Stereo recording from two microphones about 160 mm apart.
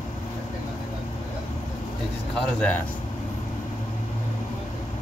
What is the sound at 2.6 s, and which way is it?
Speech, 10° left (ahead or behind).